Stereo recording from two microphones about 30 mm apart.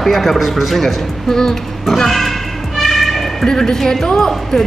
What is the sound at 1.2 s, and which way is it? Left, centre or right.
Speech, centre.